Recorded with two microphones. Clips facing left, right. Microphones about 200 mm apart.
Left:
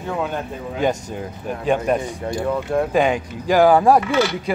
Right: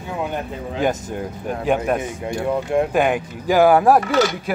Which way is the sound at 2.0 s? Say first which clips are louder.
Even; 20° right (ahead or behind).